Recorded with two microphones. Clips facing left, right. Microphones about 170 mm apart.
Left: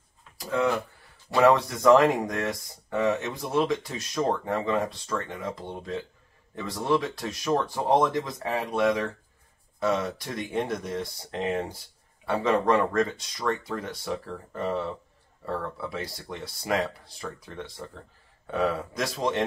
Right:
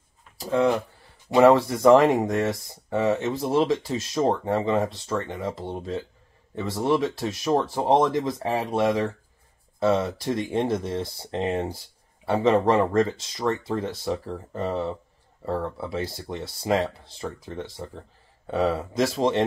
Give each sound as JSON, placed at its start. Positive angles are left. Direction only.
{"t": 0.4, "sound": "speech", "side_deg": -25}